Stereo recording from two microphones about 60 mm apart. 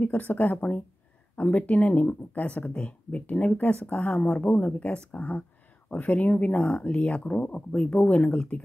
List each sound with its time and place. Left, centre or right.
0.0 s speech: left